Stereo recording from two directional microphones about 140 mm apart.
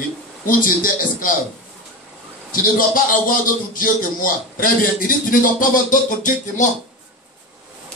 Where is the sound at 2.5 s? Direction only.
80° left.